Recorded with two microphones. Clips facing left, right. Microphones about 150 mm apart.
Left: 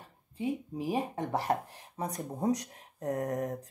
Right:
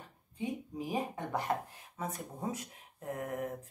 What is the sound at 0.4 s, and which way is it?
Speech, 30° left (ahead or behind).